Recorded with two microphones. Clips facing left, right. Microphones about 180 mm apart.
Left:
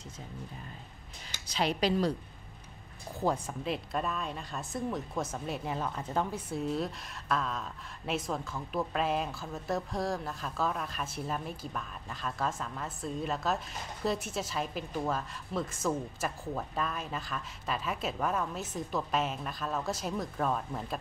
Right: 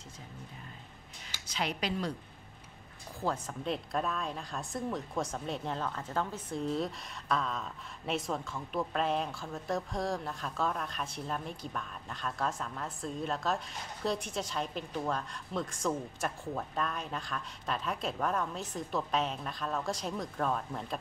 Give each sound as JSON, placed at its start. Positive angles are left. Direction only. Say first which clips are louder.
{"t": 1.5, "sound": "speech", "louder": "left 5 dB", "side_deg": 30}
{"t": 3.2, "sound": "speech", "louder": "left 3 dB", "side_deg": 15}
{"t": 3.6, "sound": "speech", "louder": "right 1 dB", "side_deg": 5}